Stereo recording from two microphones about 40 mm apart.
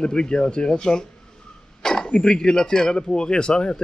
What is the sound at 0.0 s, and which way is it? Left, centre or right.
Speech, left.